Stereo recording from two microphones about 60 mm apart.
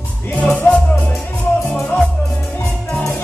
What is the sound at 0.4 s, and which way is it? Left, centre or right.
Music, left.